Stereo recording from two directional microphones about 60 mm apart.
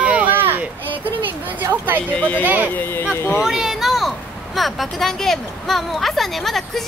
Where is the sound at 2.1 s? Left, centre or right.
Left.